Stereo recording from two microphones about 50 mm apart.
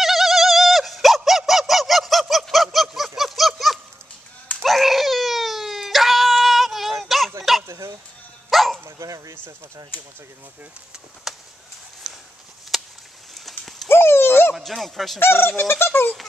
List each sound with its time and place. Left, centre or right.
0.0 s bird: centre
3.2 s a sound: centre
4.6 s dog: centre
8.5 s dog: centre
11.3 s a sound: centre
12.7 s a sound: centre
13.3 s horse: centre
13.8 s dog: left
14.5 s speech: centre
15.1 s speech: left